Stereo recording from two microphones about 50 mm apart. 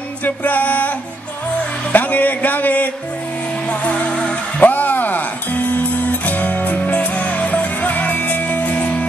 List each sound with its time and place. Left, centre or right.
0.2 s music: left
3.8 s music: left
4.6 s music: left